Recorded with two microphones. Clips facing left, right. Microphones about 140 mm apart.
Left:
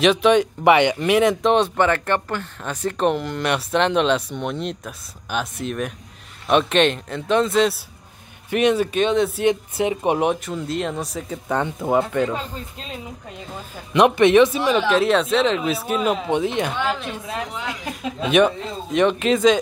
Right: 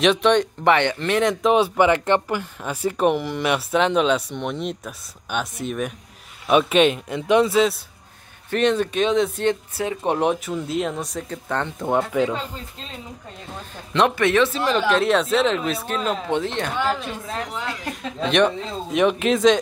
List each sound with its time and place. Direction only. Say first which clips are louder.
0.0 s speech: left 2 dB; centre (ahead or behind)
1.4 s a man's voice: even; 5° right (ahead or behind)
8.5 s speech: left 1 dB; 10° left (ahead or behind)
9.5 s speech: left 3 dB; 15° left (ahead or behind)
10.1 s speech: even; centre (ahead or behind)
13.9 s speech: left 5 dB; 15° left (ahead or behind); by 19.6 s centre (ahead or behind)